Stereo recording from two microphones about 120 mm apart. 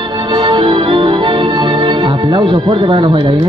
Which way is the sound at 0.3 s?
40° right (ahead or behind).